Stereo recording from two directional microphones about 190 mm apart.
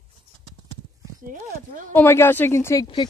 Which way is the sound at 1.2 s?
45° right (ahead or behind).